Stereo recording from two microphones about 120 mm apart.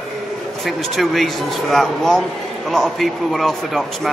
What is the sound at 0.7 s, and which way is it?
Speech, centre (ahead or behind).